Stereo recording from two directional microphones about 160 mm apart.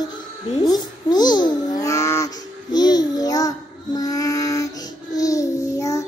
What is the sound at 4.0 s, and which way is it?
Child singing, 20° left (ahead or behind).